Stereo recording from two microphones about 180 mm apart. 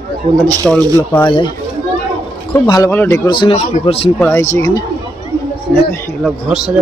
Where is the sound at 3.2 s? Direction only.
25° left (ahead or behind).